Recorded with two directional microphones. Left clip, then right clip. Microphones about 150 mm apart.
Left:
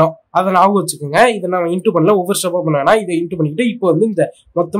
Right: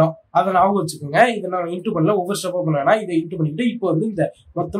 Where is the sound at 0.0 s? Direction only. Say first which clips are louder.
Left 4 dB; 50° left (ahead or behind).